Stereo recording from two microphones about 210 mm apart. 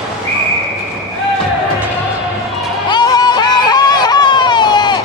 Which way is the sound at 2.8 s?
20° left (ahead or behind).